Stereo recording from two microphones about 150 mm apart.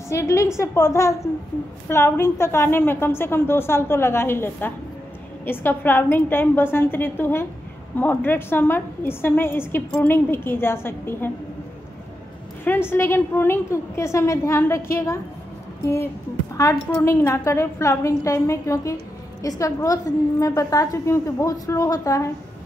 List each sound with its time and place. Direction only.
0.1 s a woman's voice: 20° left (ahead or behind)
12.6 s a woman's voice: 15° left (ahead or behind)